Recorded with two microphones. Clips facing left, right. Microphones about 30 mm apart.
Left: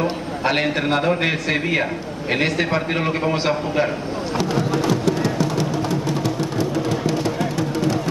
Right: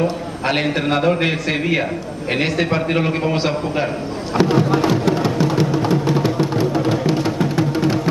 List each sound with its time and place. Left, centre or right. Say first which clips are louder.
0.5 s a man's voice: right 1 dB; centre
4.4 s music: right 6 dB; right